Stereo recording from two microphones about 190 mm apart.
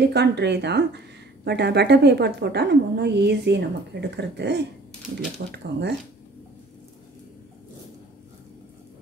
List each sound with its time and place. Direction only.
0.1 s speech: 65° right (ahead or behind)